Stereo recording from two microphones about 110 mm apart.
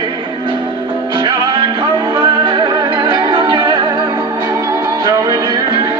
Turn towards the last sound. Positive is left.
turn(degrees=-40)  # may be behind; listen again after turning